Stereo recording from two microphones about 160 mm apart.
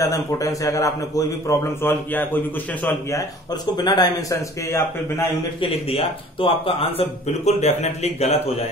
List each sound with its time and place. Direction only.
0.0 s a man's voice: 20° left (ahead or behind)
3.7 s a man's voice: 25° left (ahead or behind)
5.6 s speech: 35° left (ahead or behind)